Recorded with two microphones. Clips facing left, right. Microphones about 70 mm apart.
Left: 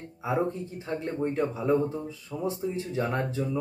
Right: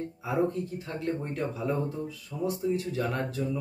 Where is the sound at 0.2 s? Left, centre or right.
Left.